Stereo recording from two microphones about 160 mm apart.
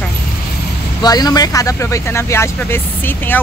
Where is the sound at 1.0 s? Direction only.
25° left (ahead or behind).